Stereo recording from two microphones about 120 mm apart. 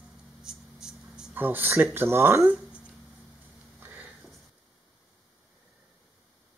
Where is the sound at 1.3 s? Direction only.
15° right (ahead or behind).